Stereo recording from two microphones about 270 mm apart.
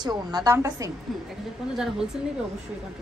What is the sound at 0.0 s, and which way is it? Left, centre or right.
Speech, centre.